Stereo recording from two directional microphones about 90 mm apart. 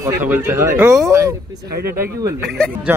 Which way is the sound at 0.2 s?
25° right (ahead or behind).